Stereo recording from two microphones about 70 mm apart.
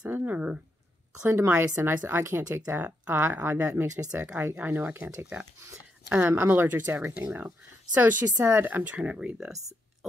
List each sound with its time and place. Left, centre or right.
0.1 s a sound: right
1.5 s speech: right
4.1 s speech: centre
4.4 s speech: right
6.0 s speech: centre
6.3 s speech: right; by 9.5 s centre